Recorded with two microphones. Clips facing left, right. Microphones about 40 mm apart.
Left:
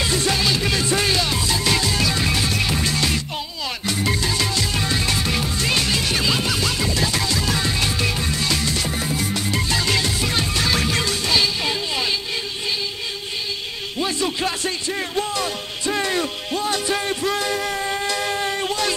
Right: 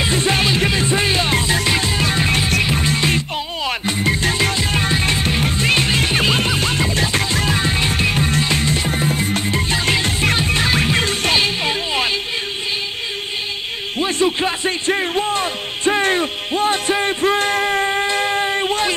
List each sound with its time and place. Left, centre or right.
0.0 s music: right
4.6 s music: right
14.2 s music: right
15.0 s a sound: right
17.2 s music: right
17.8 s a sound: right